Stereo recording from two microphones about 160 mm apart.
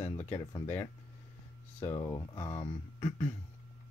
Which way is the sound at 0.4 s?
25° left (ahead or behind).